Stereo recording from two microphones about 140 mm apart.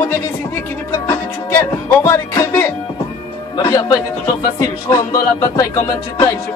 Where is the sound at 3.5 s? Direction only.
30° left (ahead or behind).